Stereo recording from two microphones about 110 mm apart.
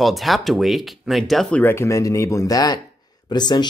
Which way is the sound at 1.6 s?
20° left (ahead or behind).